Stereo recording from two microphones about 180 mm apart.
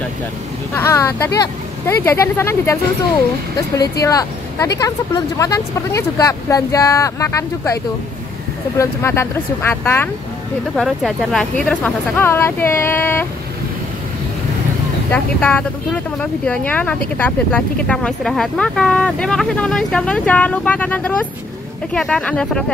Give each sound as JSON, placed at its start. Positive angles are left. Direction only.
{"t": 0.7, "sound": "speech", "side_deg": 15}
{"t": 10.8, "sound": "speech", "side_deg": 0}
{"t": 15.0, "sound": "speech", "side_deg": 10}